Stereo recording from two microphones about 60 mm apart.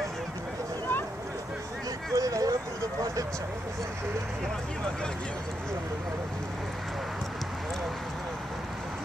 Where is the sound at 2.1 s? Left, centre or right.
Right.